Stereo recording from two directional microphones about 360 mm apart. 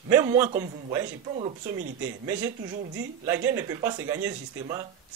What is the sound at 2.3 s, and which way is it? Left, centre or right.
Speech, centre.